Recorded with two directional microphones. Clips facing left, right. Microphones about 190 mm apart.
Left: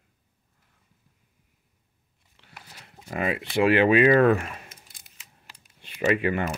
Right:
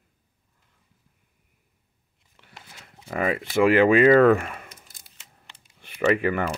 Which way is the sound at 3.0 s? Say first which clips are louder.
Right 2 dB; 50° right (ahead or behind).